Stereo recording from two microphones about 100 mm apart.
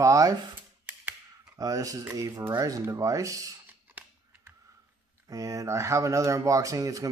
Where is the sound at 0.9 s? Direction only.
15° right (ahead or behind).